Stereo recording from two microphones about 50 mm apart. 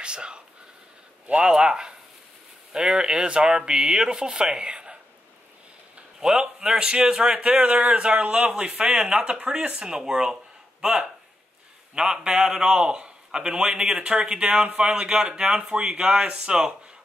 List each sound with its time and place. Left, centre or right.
0.0 s speech: centre
1.5 s speech: centre
6.1 s a man's voice: centre